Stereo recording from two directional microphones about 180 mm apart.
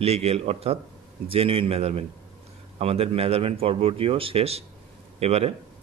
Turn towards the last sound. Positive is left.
turn(degrees=-35)  # may be behind; listen again after turning